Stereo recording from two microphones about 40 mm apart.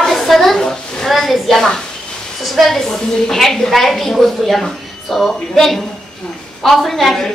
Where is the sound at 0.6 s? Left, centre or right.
Centre.